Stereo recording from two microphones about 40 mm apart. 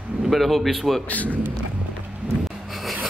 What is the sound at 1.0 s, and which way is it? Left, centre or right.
Speech, left.